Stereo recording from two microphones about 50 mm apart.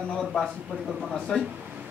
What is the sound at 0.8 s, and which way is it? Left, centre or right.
Speech, centre.